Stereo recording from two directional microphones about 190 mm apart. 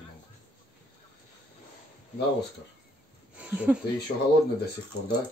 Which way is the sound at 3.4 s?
5° right (ahead or behind).